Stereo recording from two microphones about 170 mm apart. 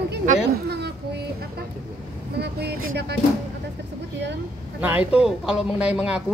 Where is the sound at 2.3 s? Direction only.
75° right (ahead or behind).